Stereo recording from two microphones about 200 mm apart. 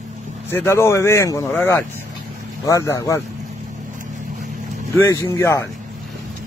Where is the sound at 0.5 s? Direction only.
10° left (ahead or behind).